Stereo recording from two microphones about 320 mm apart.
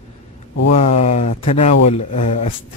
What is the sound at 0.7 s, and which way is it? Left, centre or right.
Speech, centre.